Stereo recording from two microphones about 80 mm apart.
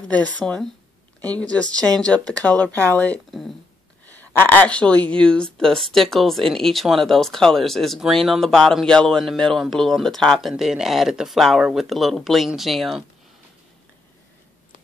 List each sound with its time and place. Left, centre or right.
0.1 s speech: centre
3.3 s a sound: centre
4.0 s speech: left; by 10.5 s centre
10.5 s speech: centre